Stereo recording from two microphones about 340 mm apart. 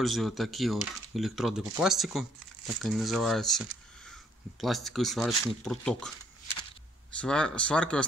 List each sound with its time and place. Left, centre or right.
0.0 s speech: centre
7.2 s speech: centre